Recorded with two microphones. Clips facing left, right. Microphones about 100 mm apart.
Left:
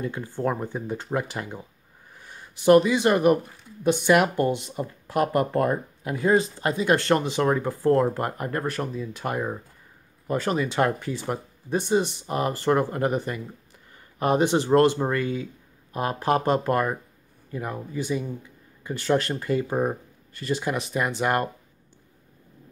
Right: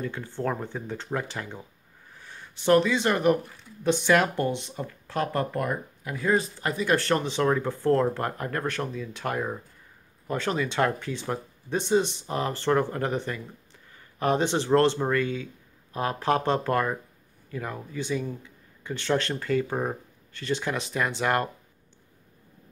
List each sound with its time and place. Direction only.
0.0 s speech: 10° left (ahead or behind)
5.5 s speech: 30° left (ahead or behind); by 21.5 s 5° left (ahead or behind)